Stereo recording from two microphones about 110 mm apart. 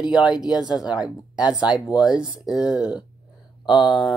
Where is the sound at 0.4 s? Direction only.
5° right (ahead or behind).